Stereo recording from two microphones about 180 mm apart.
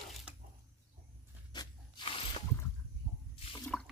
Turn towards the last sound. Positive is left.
turn(degrees=5)  # may be behind; listen again after turning